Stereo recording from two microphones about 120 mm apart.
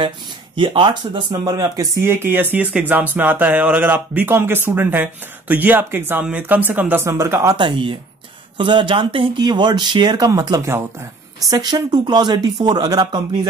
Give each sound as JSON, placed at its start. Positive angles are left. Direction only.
{"t": 0.6, "sound": "speech", "side_deg": -40}
{"t": 7.5, "sound": "speech", "side_deg": -45}
{"t": 10.6, "sound": "speech", "side_deg": -20}